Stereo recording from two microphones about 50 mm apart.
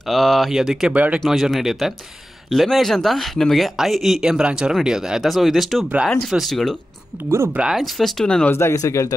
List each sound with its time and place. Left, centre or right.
0.0 s speech: centre
0.9 s speech: right
1.2 s speech: centre
5.2 s speech: centre
7.2 s speech: right
7.7 s speech: centre
8.5 s speech: left
8.8 s speech: left